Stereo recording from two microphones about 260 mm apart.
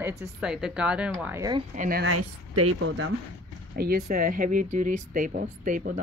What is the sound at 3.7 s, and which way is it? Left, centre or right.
Speech, right.